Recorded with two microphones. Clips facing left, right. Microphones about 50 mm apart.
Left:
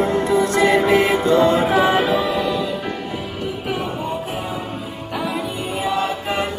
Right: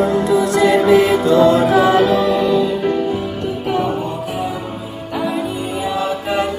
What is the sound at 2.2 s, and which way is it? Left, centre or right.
Music, centre.